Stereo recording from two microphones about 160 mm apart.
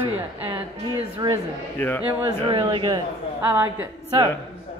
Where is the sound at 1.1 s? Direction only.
25° right (ahead or behind).